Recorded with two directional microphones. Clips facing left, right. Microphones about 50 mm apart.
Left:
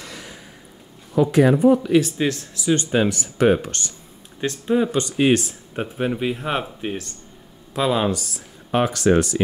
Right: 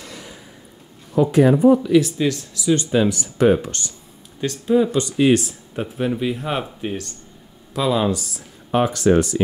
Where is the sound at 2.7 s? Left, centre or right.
Left.